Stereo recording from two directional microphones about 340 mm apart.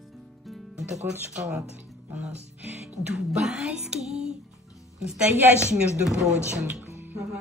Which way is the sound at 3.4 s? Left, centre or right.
Centre.